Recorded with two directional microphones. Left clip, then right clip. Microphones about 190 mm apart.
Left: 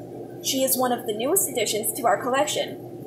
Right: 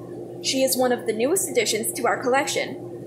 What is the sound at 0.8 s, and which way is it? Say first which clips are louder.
A woman's voice: right 2 dB; 15° right (ahead or behind).